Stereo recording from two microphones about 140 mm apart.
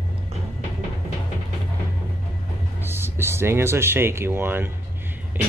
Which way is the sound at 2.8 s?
15° right (ahead or behind).